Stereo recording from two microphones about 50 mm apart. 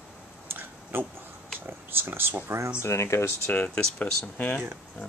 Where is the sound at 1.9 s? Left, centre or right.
Right.